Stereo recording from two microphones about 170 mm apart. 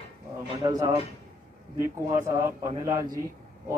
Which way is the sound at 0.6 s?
20° right (ahead or behind).